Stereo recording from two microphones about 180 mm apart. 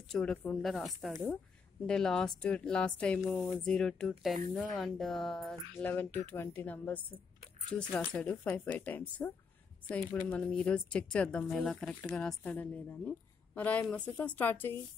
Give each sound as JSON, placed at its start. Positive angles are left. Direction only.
{"t": 0.1, "sound": "a woman's voice", "side_deg": 5}